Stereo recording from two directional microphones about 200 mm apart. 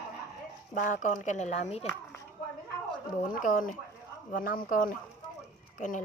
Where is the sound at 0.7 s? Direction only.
40° left (ahead or behind).